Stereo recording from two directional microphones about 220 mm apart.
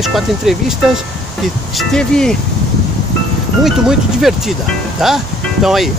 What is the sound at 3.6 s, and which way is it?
Speech, centre (ahead or behind).